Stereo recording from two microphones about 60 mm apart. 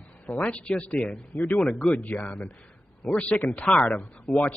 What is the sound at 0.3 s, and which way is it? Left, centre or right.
Speech, left.